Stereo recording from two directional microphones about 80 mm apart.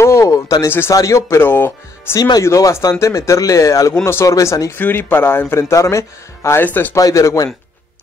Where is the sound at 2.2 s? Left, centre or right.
Left.